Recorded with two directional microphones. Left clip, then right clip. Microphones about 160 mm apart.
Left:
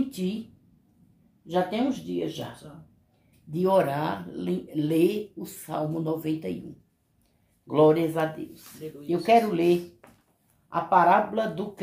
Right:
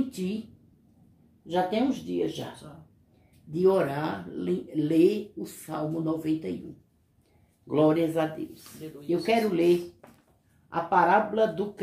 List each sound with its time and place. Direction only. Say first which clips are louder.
1.5 s speech: even; 20° left (ahead or behind)
3.5 s speech: left 1 dB; 30° left (ahead or behind)
7.6 s speech: left 3 dB; 25° left (ahead or behind)
10.7 s speech: left 2 dB; 25° left (ahead or behind)